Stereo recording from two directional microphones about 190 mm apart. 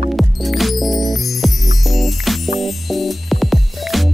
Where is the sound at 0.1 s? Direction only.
Centre (ahead or behind).